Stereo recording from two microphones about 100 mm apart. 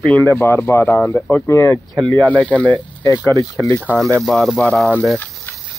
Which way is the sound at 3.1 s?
25° left (ahead or behind).